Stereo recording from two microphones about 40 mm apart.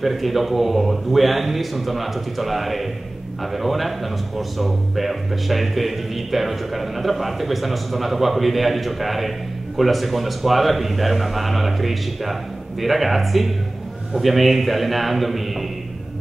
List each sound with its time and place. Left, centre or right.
0.0 s speech: centre